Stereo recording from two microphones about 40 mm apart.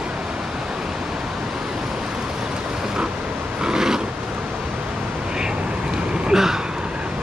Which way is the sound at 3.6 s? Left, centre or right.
Centre.